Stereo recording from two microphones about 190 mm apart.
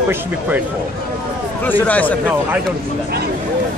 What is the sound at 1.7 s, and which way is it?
Speech, 10° left (ahead or behind).